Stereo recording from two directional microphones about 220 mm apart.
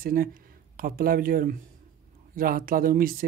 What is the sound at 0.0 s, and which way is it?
Speech, 40° right (ahead or behind).